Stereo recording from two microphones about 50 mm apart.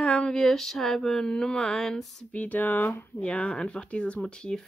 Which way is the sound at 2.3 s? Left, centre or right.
Left.